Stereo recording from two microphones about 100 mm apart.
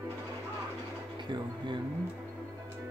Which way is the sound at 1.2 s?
50° right (ahead or behind).